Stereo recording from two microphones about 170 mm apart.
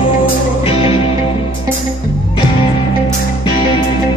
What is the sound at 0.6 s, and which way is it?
Music, 35° left (ahead or behind).